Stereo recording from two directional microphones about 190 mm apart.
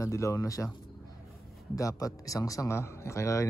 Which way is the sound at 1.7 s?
15° left (ahead or behind).